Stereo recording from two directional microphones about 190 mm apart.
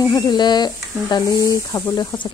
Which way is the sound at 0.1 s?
20° left (ahead or behind).